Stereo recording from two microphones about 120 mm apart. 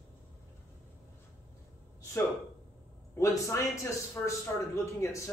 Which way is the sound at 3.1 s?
25° left (ahead or behind).